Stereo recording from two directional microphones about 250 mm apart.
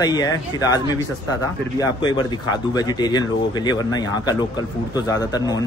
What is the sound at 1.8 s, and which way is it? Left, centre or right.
Speech, centre.